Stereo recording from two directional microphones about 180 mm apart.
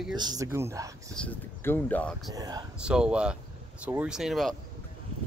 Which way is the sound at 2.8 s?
5° right (ahead or behind).